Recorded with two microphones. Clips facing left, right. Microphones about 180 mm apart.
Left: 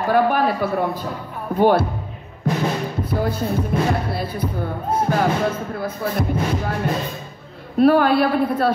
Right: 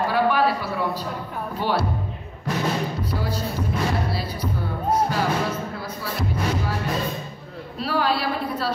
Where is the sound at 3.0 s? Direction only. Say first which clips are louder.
Left 5 dB; 55° left (ahead or behind).